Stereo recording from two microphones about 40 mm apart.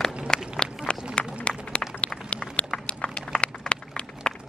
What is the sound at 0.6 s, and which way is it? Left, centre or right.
Run, left.